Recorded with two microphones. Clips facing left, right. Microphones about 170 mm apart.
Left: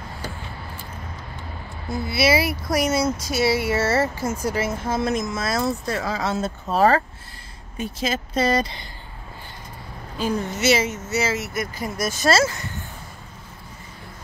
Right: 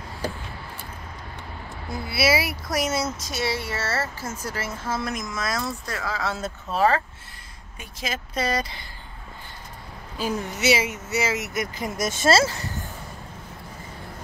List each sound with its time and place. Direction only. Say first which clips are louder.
1.9 s a woman's voice: left 3 dB; 10° right (ahead or behind); by 6.5 s 20° left (ahead or behind)
6.7 s speech: left 3 dB; 40° left (ahead or behind)
7.7 s speech: left 7 dB; 30° left (ahead or behind)
10.1 s speech: left 3 dB; 10° right (ahead or behind); by 12.6 s 30° right (ahead or behind)